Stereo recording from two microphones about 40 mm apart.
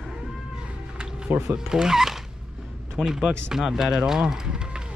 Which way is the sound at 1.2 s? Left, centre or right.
Right.